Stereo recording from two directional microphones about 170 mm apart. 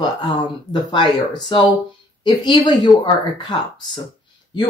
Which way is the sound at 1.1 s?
25° left (ahead or behind).